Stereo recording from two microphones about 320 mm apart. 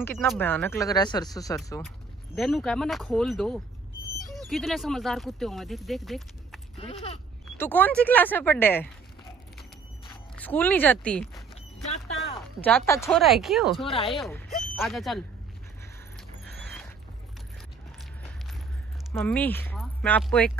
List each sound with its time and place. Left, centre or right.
0.0 s speech: centre
6.8 s speech: centre
7.5 s speech: centre
10.3 s speech: centre
12.6 s speech: centre
13.8 s speech: centre
14.1 s speech: centre
19.1 s speech: centre